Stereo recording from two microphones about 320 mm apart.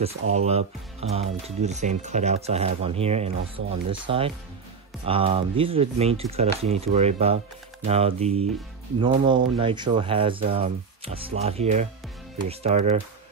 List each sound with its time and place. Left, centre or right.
0.3 s speech: centre